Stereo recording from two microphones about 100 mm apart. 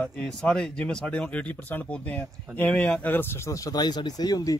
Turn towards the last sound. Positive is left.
turn(degrees=40)  # may be behind; listen again after turning